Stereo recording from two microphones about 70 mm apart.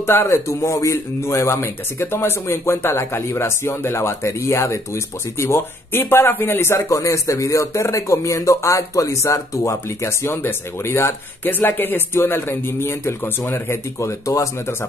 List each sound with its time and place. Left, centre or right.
0.0 s a man's voice: left
0.5 s a man's voice: left
6.9 s speech: left